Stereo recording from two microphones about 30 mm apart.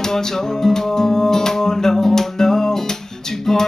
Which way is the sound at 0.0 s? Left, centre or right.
Centre.